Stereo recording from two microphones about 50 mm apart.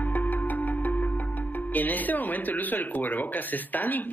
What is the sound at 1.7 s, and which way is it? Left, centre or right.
Speech, left.